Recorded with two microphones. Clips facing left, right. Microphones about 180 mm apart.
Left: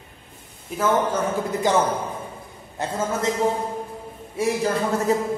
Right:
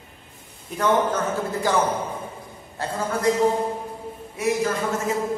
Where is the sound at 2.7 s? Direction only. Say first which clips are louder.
Left 1 dB; 20° left (ahead or behind).